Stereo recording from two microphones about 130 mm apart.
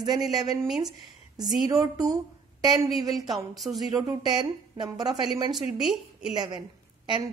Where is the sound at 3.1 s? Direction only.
Centre (ahead or behind).